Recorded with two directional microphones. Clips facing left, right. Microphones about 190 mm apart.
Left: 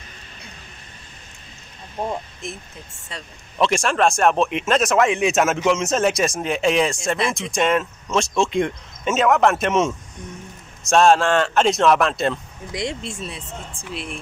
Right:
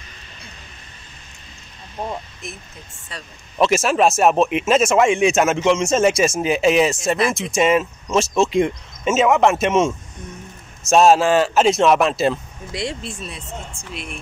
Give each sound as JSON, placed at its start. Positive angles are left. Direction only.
{"t": 2.4, "sound": "speech", "side_deg": 25}
{"t": 3.5, "sound": "speech", "side_deg": -5}
{"t": 12.7, "sound": "speech", "side_deg": 20}